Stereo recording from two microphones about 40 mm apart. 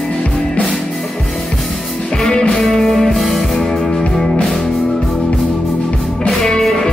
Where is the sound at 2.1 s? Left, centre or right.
Centre.